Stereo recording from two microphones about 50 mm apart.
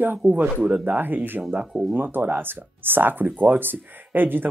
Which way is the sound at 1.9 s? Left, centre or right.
Right.